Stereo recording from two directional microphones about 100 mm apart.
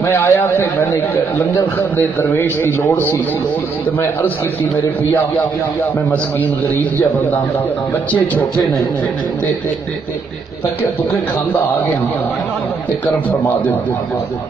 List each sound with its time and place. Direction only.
0.0 s a man's voice: 25° left (ahead or behind)
6.0 s a man's voice: 15° left (ahead or behind)